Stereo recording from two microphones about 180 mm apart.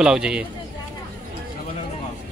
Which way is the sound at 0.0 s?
5° right (ahead or behind).